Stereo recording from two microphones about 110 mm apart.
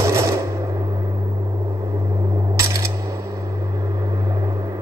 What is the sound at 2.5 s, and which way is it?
Coin, 25° right (ahead or behind).